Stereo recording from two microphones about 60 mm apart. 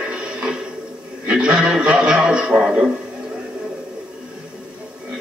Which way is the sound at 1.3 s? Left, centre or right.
Centre.